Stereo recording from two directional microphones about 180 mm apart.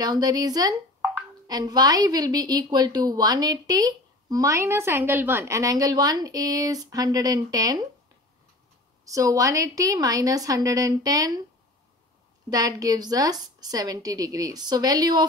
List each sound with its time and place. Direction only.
0.0 s a woman's voice: 20° right (ahead or behind)
9.0 s a woman's voice: 20° right (ahead or behind)
12.4 s a woman's voice: 20° right (ahead or behind)